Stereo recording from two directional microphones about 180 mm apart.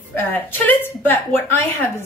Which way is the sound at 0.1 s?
10° left (ahead or behind).